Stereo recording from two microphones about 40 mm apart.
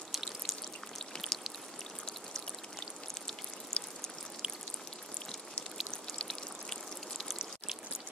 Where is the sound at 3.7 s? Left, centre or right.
Left.